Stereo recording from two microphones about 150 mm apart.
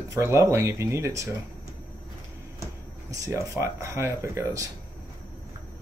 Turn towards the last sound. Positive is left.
turn(degrees=-20)  # may be behind; listen again after turning